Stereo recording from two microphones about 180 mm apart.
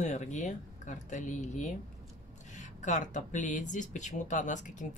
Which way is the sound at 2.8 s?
45° left (ahead or behind).